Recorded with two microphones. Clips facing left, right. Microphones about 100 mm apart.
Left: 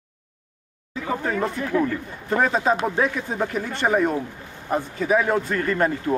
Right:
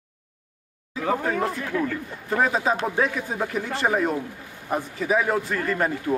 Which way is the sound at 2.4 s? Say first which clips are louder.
Left 2 dB; 5° right (ahead or behind).